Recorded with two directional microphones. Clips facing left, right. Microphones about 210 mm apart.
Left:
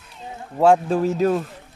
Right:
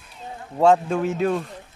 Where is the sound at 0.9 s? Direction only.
35° left (ahead or behind).